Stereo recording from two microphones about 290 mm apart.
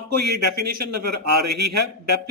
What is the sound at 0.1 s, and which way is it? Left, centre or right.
A man's voice, right.